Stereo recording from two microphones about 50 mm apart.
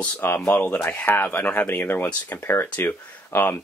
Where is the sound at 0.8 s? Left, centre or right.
Left.